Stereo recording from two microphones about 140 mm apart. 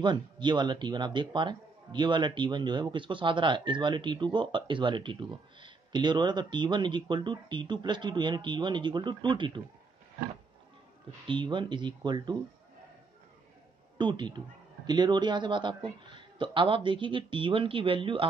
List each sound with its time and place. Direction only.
0.0 s a man's voice: 35° right (ahead or behind)
11.2 s a man's voice: 35° right (ahead or behind)
13.9 s a man's voice: 35° right (ahead or behind)